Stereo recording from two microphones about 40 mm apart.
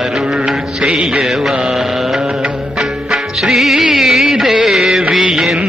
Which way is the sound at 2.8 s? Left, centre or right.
Centre.